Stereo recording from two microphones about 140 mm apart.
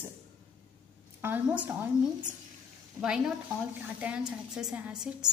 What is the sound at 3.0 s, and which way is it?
A woman's voice, 5° right (ahead or behind).